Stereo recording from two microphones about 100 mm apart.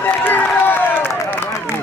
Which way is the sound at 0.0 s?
20° left (ahead or behind).